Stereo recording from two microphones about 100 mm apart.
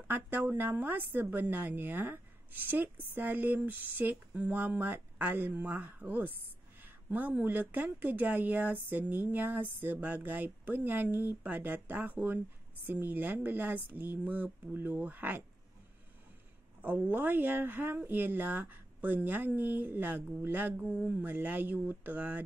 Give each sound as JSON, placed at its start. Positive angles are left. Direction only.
{"t": 0.1, "sound": "speech", "side_deg": -20}
{"t": 16.8, "sound": "speech", "side_deg": -15}